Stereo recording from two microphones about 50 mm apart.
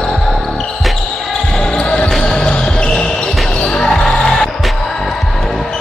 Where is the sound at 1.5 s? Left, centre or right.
Centre.